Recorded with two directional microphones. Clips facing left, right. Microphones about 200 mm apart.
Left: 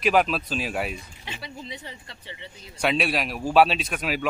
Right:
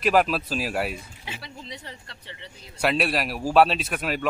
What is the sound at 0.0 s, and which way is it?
A man's voice, centre (ahead or behind).